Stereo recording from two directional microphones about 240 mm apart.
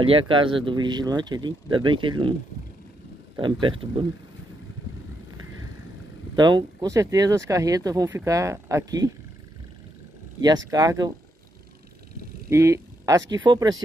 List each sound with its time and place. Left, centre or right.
0.0 s speech: right
6.3 s speech: centre
10.7 s speech: centre
12.4 s a sound: centre
13.3 s speech: centre